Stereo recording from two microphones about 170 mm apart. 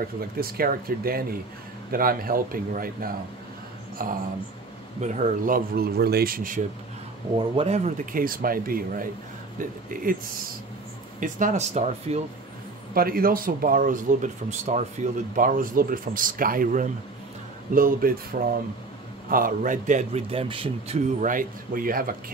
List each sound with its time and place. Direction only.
0.4 s speech: 60° right (ahead or behind)
7.3 s speech: 35° right (ahead or behind)
12.9 s a man's voice: 60° right (ahead or behind); by 21.0 s 30° right (ahead or behind)
21.2 s speech: 50° right (ahead or behind)